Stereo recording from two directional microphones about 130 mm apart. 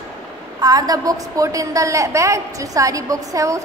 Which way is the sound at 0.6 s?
30° right (ahead or behind).